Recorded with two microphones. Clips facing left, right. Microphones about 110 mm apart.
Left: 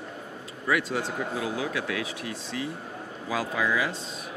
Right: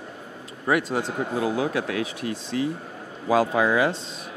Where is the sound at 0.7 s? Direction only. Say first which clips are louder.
Right 4 dB; 40° right (ahead or behind).